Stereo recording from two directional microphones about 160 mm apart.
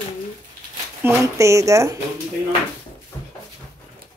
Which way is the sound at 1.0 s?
20° right (ahead or behind).